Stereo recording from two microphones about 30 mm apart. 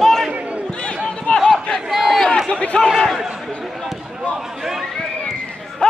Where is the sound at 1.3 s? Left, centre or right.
Centre.